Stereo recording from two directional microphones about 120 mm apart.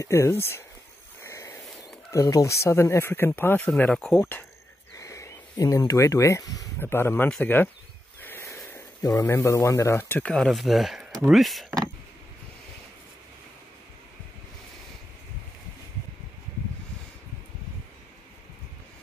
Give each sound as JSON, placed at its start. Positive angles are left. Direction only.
{"t": 0.0, "sound": "speech", "side_deg": 25}
{"t": 1.2, "sound": "a sound", "side_deg": 25}
{"t": 2.0, "sound": "speech", "side_deg": 30}
{"t": 4.2, "sound": "speech", "side_deg": 15}
{"t": 10.3, "sound": "speech", "side_deg": 0}